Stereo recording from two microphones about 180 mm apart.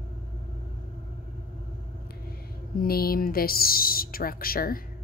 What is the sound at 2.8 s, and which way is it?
Speech, 55° left (ahead or behind).